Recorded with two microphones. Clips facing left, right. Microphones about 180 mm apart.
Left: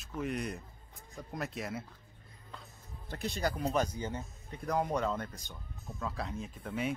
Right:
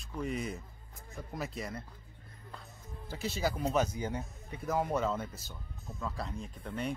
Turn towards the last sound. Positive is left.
turn(degrees=0)  # may be behind; listen again after turning